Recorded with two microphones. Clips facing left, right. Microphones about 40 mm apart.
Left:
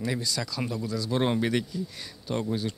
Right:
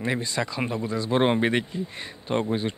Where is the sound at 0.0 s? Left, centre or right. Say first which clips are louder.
Right 4 dB; right.